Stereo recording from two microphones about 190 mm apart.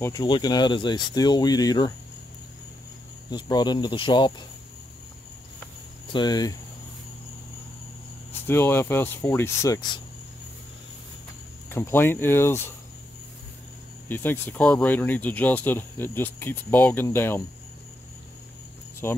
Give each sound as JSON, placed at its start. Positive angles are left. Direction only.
{"t": 0.0, "sound": "speech", "side_deg": 20}
{"t": 3.3, "sound": "speech", "side_deg": 20}
{"t": 6.1, "sound": "speech", "side_deg": 20}
{"t": 8.3, "sound": "speech", "side_deg": 10}
{"t": 11.7, "sound": "speech", "side_deg": 10}
{"t": 14.0, "sound": "speech", "side_deg": 10}